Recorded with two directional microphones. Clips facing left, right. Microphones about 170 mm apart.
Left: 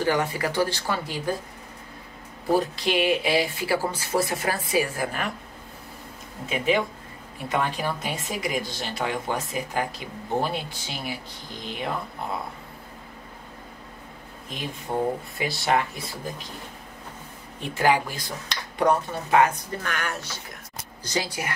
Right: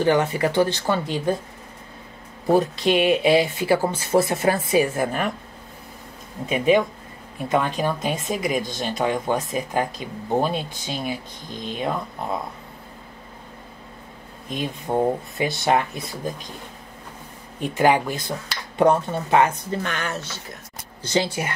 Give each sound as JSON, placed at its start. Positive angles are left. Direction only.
{"t": 0.0, "sound": "speech", "side_deg": -25}
{"t": 2.5, "sound": "speech", "side_deg": -20}
{"t": 7.4, "sound": "speech", "side_deg": -20}
{"t": 14.5, "sound": "speech", "side_deg": -20}
{"t": 17.6, "sound": "speech", "side_deg": -20}